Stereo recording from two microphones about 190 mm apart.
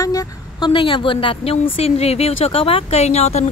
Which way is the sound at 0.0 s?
20° left (ahead or behind).